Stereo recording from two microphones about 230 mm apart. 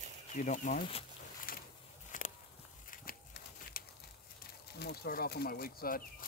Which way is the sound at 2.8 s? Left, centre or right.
Left.